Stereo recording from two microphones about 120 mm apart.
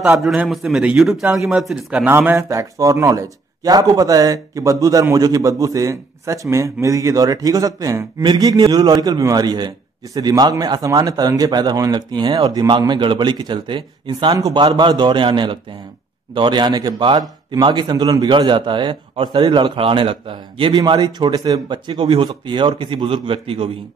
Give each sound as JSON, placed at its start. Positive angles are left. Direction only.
{"t": 0.2, "sound": "a man's voice", "side_deg": -5}
{"t": 2.0, "sound": "a man's voice", "side_deg": -20}